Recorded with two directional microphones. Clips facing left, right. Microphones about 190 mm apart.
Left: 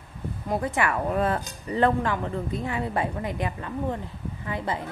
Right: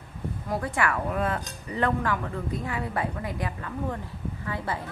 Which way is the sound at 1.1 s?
35° left (ahead or behind).